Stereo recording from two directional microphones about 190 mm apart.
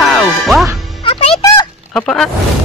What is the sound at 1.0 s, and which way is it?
Music, 30° left (ahead or behind).